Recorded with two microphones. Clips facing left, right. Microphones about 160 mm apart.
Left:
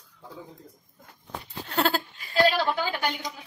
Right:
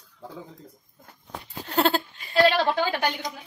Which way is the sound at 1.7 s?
25° right (ahead or behind).